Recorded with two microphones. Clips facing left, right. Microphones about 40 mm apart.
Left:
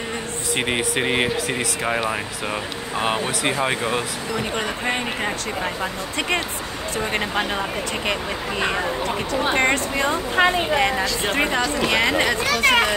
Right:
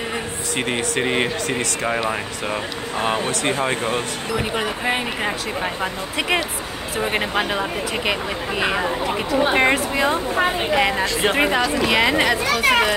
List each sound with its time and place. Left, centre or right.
0.6 s speech: centre
3.0 s speech: centre
4.4 s speech: centre